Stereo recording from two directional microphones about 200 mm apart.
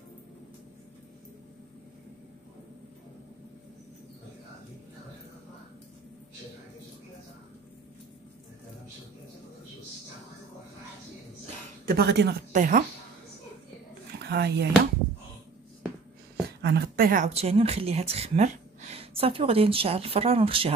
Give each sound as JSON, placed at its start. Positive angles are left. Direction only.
{"t": 11.8, "sound": "a woman's voice", "side_deg": -50}
{"t": 12.5, "sound": "speech", "side_deg": -40}
{"t": 14.2, "sound": "a sound", "side_deg": -55}
{"t": 16.6, "sound": "speech", "side_deg": -55}